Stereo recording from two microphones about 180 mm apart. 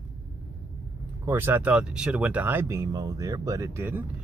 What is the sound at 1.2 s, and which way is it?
Speech, 10° right (ahead or behind).